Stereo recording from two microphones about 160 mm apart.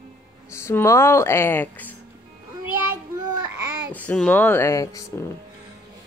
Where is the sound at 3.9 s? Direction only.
10° left (ahead or behind).